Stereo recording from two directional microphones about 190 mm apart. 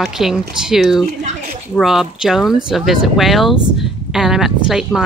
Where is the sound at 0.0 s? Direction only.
Centre (ahead or behind).